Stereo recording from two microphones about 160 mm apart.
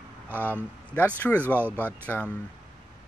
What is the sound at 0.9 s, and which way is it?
Speech, 10° left (ahead or behind).